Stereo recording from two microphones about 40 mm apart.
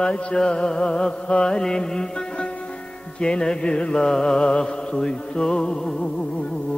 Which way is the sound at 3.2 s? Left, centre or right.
Left.